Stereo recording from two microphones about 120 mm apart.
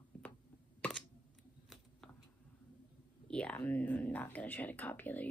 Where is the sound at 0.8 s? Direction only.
15° left (ahead or behind).